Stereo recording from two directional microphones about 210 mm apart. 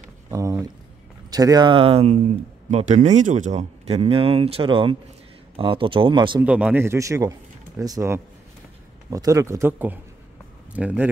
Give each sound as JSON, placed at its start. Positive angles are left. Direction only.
{"t": 0.3, "sound": "a sound", "side_deg": -15}
{"t": 1.3, "sound": "speech", "side_deg": -20}
{"t": 6.4, "sound": "a man's voice", "side_deg": -5}